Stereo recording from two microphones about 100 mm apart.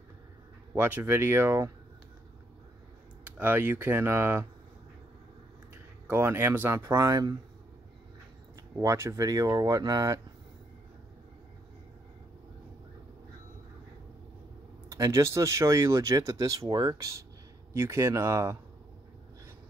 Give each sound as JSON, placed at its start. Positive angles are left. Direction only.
{"t": 0.7, "sound": "speech", "side_deg": -20}
{"t": 3.3, "sound": "speech", "side_deg": -15}
{"t": 6.0, "sound": "speech", "side_deg": -25}
{"t": 8.8, "sound": "speech", "side_deg": -30}
{"t": 14.9, "sound": "speech", "side_deg": -30}